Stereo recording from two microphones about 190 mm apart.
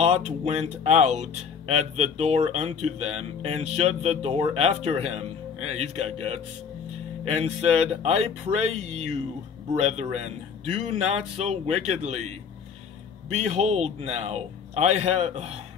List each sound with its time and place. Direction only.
0.0 s speech: 35° right (ahead or behind)